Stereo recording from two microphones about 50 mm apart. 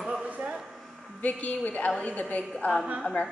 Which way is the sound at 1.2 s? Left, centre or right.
Left.